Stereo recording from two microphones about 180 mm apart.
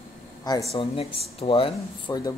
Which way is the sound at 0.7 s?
30° left (ahead or behind).